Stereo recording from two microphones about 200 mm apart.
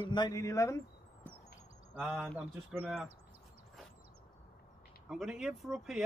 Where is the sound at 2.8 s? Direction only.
Centre (ahead or behind).